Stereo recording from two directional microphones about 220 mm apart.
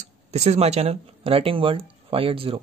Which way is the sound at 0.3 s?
30° right (ahead or behind).